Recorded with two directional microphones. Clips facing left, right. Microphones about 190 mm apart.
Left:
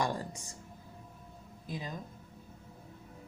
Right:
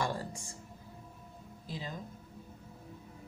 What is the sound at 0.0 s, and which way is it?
Music, 20° left (ahead or behind).